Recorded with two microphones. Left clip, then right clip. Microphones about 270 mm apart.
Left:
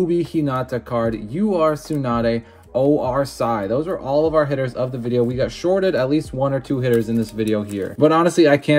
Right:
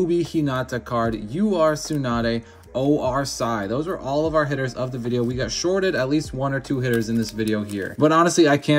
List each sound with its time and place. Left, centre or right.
0.1 s speech: centre